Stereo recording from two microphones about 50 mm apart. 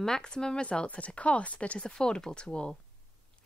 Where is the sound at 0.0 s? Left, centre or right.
Centre.